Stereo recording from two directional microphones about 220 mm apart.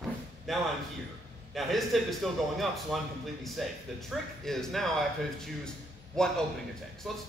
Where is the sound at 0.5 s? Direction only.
Centre (ahead or behind).